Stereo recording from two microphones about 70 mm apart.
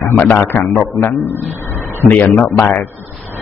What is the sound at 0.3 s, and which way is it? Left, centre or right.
A man's voice, left.